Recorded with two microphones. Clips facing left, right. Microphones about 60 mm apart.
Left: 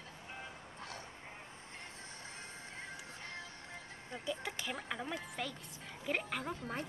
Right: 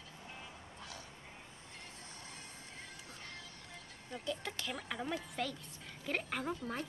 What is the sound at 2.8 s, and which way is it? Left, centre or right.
Music, left.